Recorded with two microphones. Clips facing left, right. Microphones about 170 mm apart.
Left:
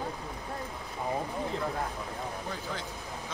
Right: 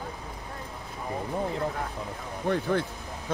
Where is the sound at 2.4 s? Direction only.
60° right (ahead or behind).